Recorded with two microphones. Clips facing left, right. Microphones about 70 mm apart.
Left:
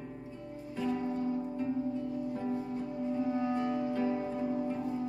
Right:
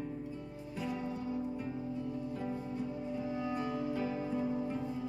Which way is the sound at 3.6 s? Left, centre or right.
Centre.